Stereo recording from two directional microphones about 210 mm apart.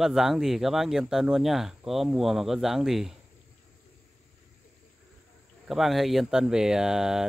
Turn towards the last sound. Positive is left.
turn(degrees=0)  # may be behind; listen again after turning